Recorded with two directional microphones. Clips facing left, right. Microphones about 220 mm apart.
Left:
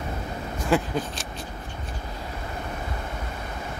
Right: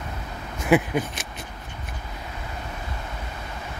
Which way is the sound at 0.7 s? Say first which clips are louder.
Right 4 dB; 20° right (ahead or behind).